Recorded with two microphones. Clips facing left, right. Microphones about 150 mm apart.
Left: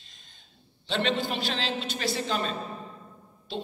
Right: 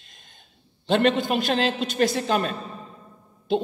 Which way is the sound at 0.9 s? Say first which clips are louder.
Right 8 dB; 50° right (ahead or behind).